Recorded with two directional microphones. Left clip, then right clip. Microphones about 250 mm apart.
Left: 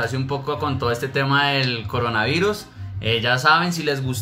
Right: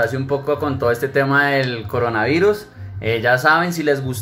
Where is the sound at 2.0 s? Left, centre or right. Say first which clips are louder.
Right 4 dB; centre.